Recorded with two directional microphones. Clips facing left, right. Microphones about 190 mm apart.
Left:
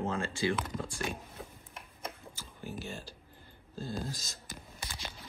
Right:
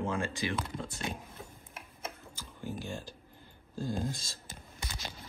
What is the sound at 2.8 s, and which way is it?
Speech, 15° right (ahead or behind).